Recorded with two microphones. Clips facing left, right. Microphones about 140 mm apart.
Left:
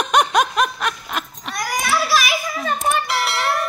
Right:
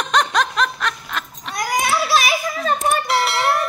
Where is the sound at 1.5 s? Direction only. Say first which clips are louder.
Right 2 dB; 20° right (ahead or behind).